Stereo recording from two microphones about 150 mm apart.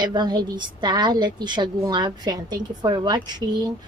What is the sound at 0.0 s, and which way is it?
A woman's voice, 30° right (ahead or behind).